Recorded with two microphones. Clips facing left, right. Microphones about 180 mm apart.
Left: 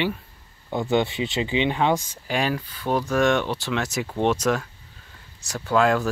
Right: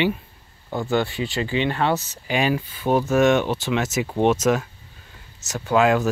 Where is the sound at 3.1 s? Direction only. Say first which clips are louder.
Right 3 dB; 5° right (ahead or behind).